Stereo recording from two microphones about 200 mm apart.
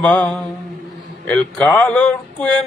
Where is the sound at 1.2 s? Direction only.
5° left (ahead or behind).